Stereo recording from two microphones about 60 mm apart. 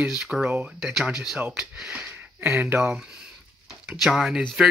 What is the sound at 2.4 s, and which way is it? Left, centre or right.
Speech, right.